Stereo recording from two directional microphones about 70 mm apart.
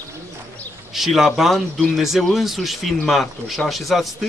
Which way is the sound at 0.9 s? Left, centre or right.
Centre.